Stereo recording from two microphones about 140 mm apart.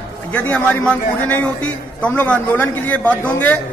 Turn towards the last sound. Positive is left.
turn(degrees=15)  # may be behind; listen again after turning